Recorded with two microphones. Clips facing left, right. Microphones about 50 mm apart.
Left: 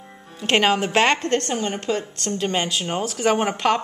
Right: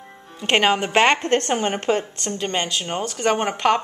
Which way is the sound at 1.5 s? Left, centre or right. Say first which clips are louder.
Right 3 dB; right.